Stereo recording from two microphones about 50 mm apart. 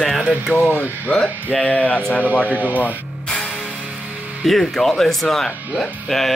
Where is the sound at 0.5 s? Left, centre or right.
Left.